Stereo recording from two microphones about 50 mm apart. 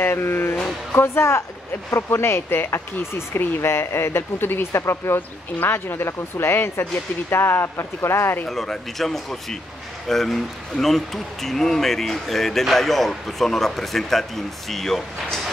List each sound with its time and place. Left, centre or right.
0.0 s speech: left
4.7 s speech: left
5.6 s speech: left
8.5 s speech: centre